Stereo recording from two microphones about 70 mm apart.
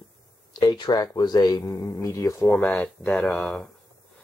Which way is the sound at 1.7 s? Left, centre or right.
Left.